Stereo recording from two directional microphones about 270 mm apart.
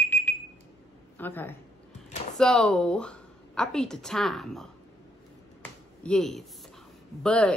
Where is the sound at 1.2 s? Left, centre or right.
Centre.